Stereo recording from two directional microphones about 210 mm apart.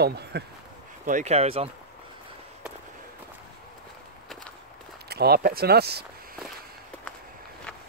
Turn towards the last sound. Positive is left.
turn(degrees=-50)  # may be behind; listen again after turning